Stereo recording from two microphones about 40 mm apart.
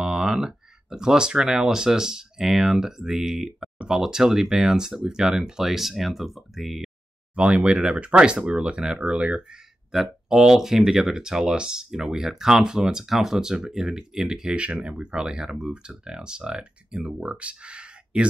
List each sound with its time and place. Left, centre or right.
0.0 s speech: centre
7.3 s speech: right
9.9 s speech: centre
14.5 s speech: right